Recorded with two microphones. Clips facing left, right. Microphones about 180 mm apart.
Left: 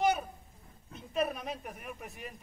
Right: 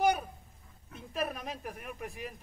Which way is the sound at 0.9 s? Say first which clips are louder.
Left 3 dB; centre (ahead or behind).